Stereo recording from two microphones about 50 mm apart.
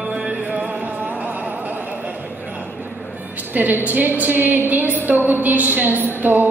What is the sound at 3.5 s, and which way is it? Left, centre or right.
A woman's voice, right.